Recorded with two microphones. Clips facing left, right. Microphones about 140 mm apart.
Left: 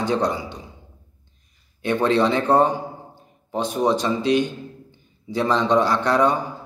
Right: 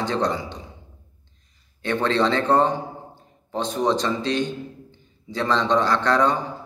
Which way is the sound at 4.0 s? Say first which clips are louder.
Left 4 dB; 15° left (ahead or behind).